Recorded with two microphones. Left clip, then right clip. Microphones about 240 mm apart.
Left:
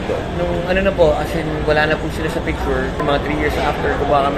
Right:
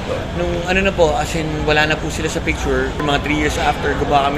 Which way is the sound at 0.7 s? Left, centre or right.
Right.